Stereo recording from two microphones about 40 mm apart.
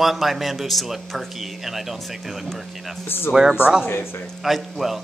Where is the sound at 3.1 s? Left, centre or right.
Left.